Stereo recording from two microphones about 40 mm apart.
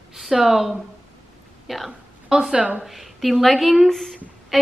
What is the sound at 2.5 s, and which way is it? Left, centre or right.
Speech, right.